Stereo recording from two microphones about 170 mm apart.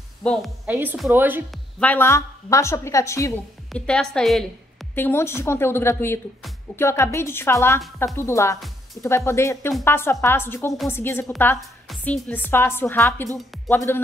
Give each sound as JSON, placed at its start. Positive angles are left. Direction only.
{"t": 0.2, "sound": "a woman's voice", "side_deg": 5}
{"t": 0.7, "sound": "speech", "side_deg": -10}
{"t": 1.5, "sound": "a woman's voice", "side_deg": 10}
{"t": 3.7, "sound": "a woman's voice", "side_deg": 5}
{"t": 4.9, "sound": "a woman's voice", "side_deg": 15}
{"t": 8.5, "sound": "music", "side_deg": 0}
{"t": 9.0, "sound": "a woman's voice", "side_deg": 15}